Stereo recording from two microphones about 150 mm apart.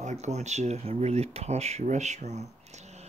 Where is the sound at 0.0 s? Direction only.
50° right (ahead or behind).